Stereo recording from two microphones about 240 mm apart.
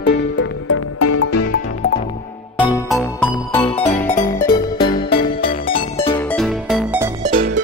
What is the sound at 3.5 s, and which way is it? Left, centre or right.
Music, centre.